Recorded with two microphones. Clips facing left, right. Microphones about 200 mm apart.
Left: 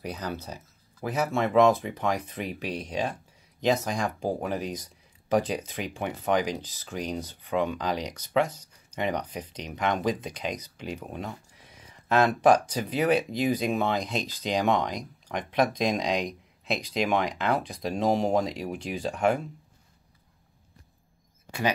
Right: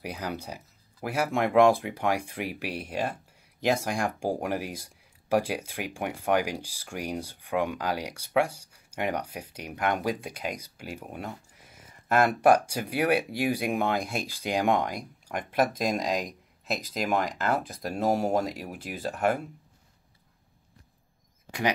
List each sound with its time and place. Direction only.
0.0 s speech: 10° right (ahead or behind)
21.5 s speech: 15° right (ahead or behind)